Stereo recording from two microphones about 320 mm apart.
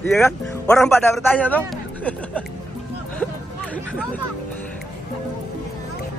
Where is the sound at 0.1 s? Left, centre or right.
Centre.